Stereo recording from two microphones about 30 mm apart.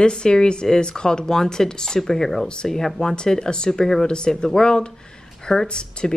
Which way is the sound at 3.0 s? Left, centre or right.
Left.